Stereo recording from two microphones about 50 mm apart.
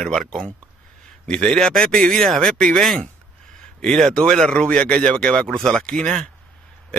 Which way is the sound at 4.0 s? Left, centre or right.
Centre.